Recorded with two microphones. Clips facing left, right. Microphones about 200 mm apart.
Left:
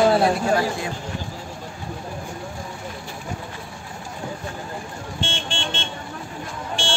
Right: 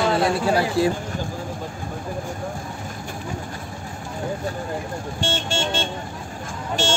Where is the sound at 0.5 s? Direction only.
35° right (ahead or behind).